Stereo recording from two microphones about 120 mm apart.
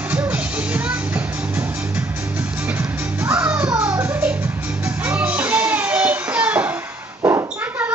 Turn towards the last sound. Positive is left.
turn(degrees=-20)  # may be behind; listen again after turning